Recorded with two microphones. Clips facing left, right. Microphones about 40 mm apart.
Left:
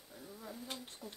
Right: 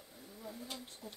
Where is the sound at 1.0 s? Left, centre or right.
Centre.